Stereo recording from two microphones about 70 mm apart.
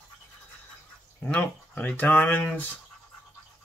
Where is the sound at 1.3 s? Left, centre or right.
Left.